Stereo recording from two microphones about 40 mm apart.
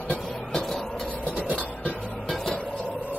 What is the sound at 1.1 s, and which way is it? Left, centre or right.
Vehicle, left.